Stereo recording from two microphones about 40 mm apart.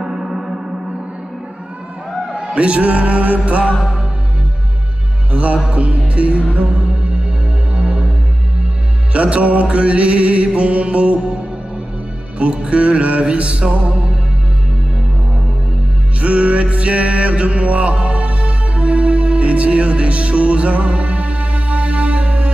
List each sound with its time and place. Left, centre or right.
0.0 s gong: centre
2.3 s music: right
5.3 s music: right
9.1 s music: right
12.4 s music: right
16.2 s music: right